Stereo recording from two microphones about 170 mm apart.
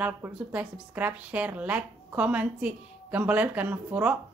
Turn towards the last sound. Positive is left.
turn(degrees=-10)  # may be behind; listen again after turning